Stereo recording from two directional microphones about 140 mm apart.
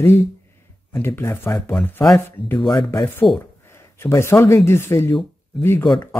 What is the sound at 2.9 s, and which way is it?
Speech, 15° left (ahead or behind).